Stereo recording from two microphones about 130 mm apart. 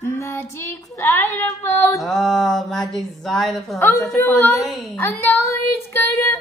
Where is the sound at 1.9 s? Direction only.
Centre (ahead or behind).